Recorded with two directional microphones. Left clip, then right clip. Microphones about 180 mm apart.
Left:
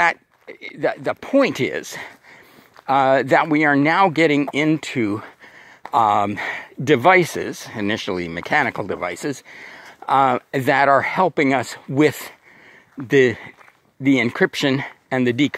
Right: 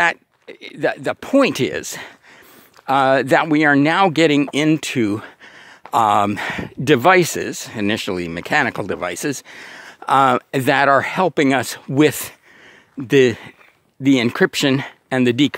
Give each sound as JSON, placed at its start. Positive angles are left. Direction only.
{"t": 0.0, "sound": "speech", "side_deg": -35}